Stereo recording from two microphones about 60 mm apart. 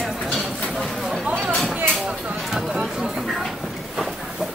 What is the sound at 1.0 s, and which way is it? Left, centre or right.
Speech, centre.